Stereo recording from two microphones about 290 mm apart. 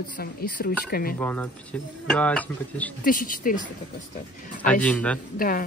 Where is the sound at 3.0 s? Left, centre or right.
Left.